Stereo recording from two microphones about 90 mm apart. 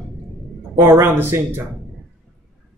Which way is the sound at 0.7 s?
25° right (ahead or behind).